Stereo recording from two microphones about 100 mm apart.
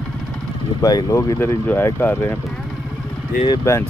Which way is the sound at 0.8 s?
40° left (ahead or behind).